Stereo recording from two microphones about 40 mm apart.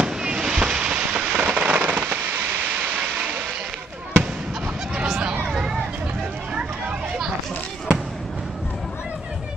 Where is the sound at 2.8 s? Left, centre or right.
Right.